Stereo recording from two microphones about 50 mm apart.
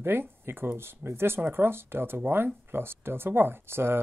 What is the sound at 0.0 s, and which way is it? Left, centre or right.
Speech, right.